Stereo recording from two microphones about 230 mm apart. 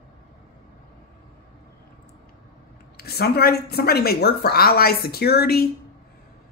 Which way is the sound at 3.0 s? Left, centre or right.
Left.